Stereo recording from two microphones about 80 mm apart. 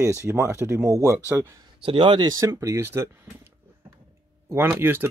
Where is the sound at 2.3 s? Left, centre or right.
Right.